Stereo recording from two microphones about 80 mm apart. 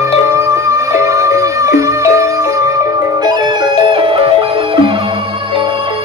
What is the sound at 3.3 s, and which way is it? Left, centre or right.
Music, right.